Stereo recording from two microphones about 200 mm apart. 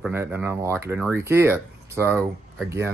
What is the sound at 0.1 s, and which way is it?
Speech, 10° right (ahead or behind).